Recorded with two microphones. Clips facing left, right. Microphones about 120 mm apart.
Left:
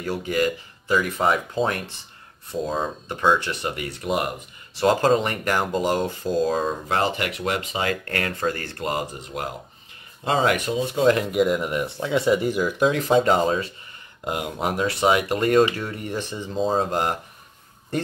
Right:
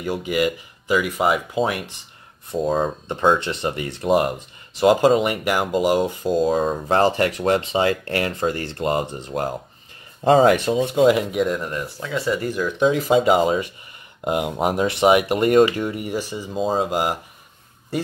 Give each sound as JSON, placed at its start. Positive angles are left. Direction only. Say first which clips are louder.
{"t": 0.0, "sound": "speech", "louder": "right 2 dB", "side_deg": -15}
{"t": 3.1, "sound": "speech", "louder": "right 1 dB", "side_deg": -25}
{"t": 4.7, "sound": "speech", "louder": "right 3 dB", "side_deg": -15}
{"t": 6.6, "sound": "speech", "louder": "right 5 dB", "side_deg": -35}
{"t": 11.1, "sound": "speech", "louder": "right 1 dB", "side_deg": 0}
{"t": 11.7, "sound": "speech", "louder": "left 3 dB", "side_deg": 20}